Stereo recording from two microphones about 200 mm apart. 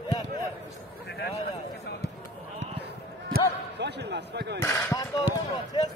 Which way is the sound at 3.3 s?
60° right (ahead or behind).